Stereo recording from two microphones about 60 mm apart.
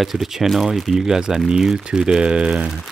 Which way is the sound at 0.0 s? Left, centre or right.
Centre.